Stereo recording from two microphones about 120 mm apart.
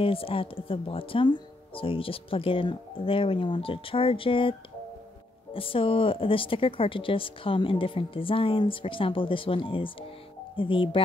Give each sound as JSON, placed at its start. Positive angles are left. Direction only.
{"t": 0.0, "sound": "speech", "side_deg": 50}